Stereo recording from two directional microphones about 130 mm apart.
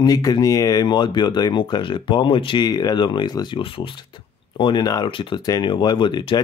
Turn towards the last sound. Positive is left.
turn(degrees=35)  # may be behind; listen again after turning